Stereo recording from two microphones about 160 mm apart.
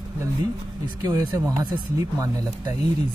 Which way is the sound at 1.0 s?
20° right (ahead or behind).